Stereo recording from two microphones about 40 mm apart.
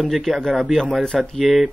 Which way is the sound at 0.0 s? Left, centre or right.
Centre.